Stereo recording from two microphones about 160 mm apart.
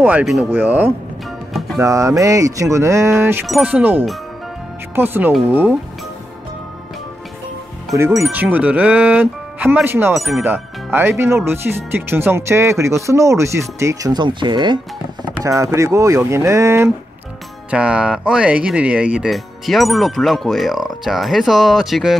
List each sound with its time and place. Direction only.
0.0 s speech: 5° right (ahead or behind)
3.4 s speech: 5° right (ahead or behind)
8.2 s speech: 10° right (ahead or behind)
10.1 s speech: centre (ahead or behind)
10.4 s speech: 10° right (ahead or behind)
17.6 s speech: 5° right (ahead or behind)